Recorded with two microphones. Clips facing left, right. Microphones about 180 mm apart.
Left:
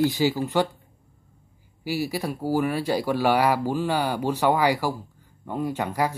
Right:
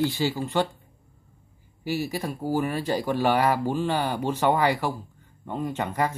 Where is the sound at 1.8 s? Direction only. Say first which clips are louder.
Left 1 dB; 10° left (ahead or behind).